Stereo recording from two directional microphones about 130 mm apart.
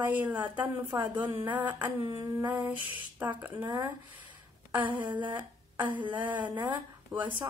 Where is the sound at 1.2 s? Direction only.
20° right (ahead or behind).